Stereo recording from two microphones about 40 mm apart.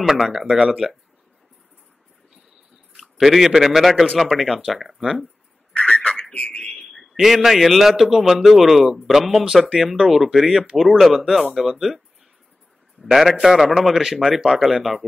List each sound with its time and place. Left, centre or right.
0.3 s speech: centre
3.0 s a man's voice: centre
5.7 s a sound: left
6.4 s speech: left
6.8 s a sound: centre
7.2 s a man's voice: centre
10.8 s speech: centre
11.1 s a man's voice: centre
13.0 s a man's voice: centre